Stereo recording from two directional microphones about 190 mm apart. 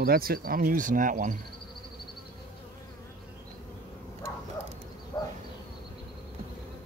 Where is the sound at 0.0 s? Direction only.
50° right (ahead or behind).